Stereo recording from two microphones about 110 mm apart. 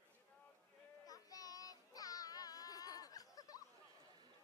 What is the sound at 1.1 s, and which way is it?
Child singing, 35° left (ahead or behind).